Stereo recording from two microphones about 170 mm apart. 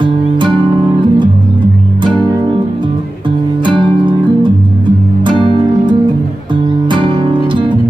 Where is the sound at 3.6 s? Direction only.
30° right (ahead or behind).